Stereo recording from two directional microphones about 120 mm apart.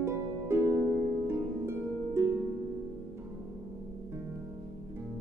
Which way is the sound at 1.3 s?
20° right (ahead or behind).